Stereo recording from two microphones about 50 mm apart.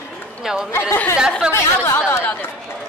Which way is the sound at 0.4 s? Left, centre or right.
Centre.